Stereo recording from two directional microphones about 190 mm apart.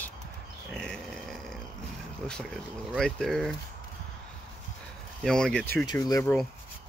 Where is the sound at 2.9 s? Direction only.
Centre (ahead or behind).